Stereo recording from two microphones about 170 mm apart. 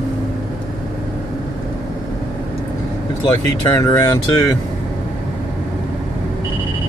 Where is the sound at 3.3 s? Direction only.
20° left (ahead or behind).